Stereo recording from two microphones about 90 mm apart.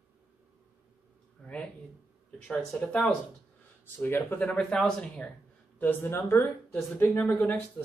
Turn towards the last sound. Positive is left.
turn(degrees=25)  # may be behind; listen again after turning